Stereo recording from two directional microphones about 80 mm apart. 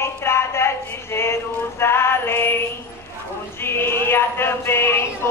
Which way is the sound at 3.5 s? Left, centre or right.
Left.